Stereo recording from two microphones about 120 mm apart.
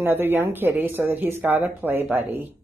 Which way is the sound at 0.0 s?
15° right (ahead or behind).